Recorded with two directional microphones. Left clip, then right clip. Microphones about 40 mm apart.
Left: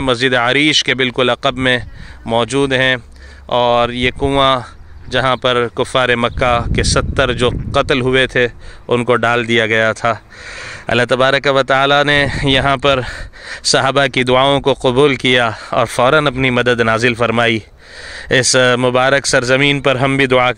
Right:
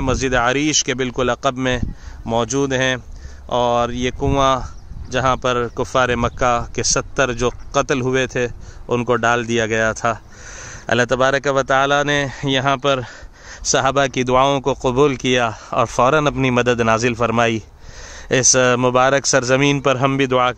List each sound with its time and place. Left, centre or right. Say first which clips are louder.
0.0 s speech: left 4 dB; left
3.4 s speech: left 4 dB; centre
5.1 s speech: left 4 dB; left
5.8 s speech: left 4 dB; centre; by 11.7 s left
11.7 s speech: left 4 dB; left
13.0 s gasp: left 9 dB; left
13.7 s speech: left 4 dB; left
14.1 s speech: left 4 dB; centre
16.0 s speech: left 3 dB; centre
19.2 s speech: left 3 dB; centre
19.8 s speech: left 3 dB; centre
20.3 s speech: left 4 dB; left